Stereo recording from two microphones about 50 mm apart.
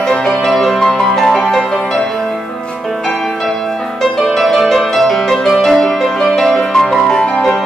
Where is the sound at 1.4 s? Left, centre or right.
Centre.